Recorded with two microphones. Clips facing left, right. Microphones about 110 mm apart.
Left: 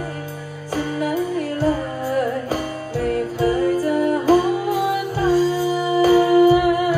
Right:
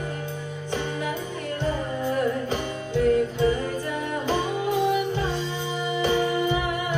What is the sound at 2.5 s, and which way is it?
Music, 40° left (ahead or behind).